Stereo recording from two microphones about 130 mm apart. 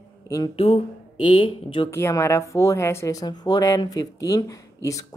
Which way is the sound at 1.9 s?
20° left (ahead or behind).